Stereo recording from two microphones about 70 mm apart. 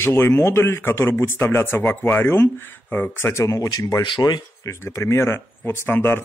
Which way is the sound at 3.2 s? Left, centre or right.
Left.